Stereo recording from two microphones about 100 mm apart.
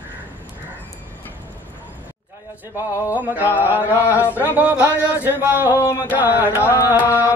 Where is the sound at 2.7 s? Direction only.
30° left (ahead or behind).